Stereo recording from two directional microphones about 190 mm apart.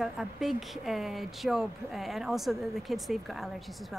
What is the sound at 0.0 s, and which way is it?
A woman's voice, centre (ahead or behind).